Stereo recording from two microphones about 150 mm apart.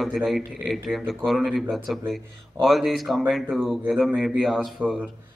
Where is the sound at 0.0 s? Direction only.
Centre (ahead or behind).